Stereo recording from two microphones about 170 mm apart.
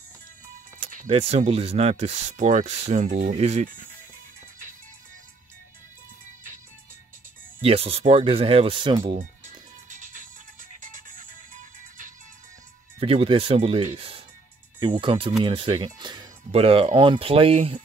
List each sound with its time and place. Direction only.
0.7 s speech: 40° right (ahead or behind)
7.6 s speech: 35° right (ahead or behind)
9.2 s music: 50° right (ahead or behind)
13.0 s speech: 35° right (ahead or behind)